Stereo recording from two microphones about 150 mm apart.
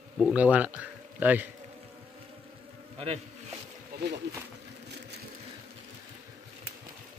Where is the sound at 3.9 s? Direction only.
90° right.